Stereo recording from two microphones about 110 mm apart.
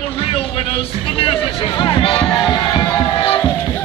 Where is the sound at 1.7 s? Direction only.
40° left (ahead or behind).